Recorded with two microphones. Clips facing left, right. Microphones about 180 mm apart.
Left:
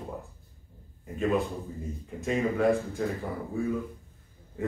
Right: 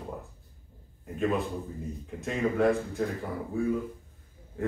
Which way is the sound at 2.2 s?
Centre (ahead or behind).